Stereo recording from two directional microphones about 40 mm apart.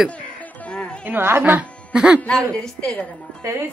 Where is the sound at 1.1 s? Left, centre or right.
Right.